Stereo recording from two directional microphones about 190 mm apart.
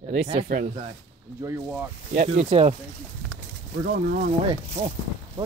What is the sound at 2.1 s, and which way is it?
Speech, 40° right (ahead or behind).